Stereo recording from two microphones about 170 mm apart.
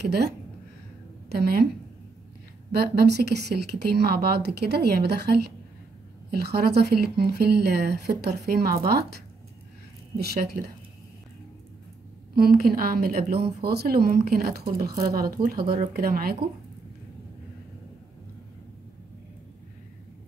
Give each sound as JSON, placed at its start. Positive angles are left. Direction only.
{"t": 0.0, "sound": "speech", "side_deg": -75}
{"t": 1.3, "sound": "a woman's voice", "side_deg": -65}
{"t": 2.7, "sound": "speech", "side_deg": -70}
{"t": 12.4, "sound": "a woman's voice", "side_deg": -60}